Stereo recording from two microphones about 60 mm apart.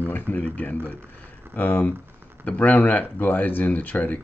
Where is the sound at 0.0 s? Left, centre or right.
Left.